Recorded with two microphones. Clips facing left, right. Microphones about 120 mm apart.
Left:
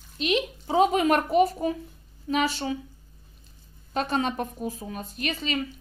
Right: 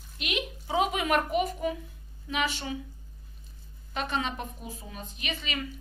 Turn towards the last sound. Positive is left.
turn(degrees=35)  # may be behind; listen again after turning